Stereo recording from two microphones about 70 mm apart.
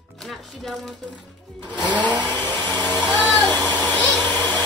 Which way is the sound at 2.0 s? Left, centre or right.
Right.